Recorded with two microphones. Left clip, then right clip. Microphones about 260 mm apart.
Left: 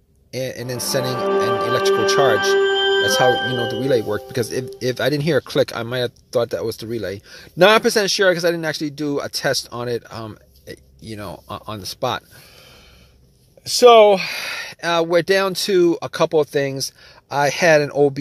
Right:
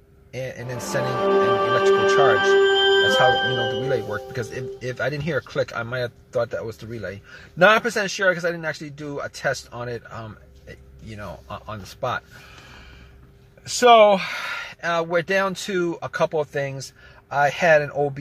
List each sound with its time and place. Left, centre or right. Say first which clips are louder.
0.3 s speech: left 5 dB; left
0.7 s speech: left 2 dB; centre
3.9 s speech: left 6 dB; left
13.7 s speech: left 3 dB; left